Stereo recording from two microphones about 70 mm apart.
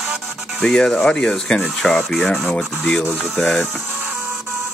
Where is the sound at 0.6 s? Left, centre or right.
Centre.